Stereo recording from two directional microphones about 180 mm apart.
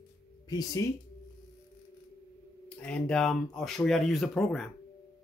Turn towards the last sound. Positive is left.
turn(degrees=5)  # may be behind; listen again after turning